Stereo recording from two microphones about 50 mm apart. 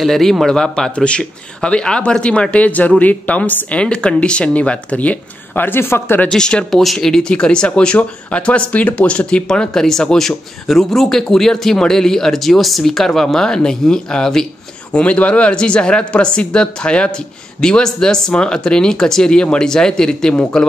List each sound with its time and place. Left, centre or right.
0.0 s a man's voice: centre; by 5.1 s left
5.6 s speech: left
6.3 s speech: centre
14.9 s a man's voice: left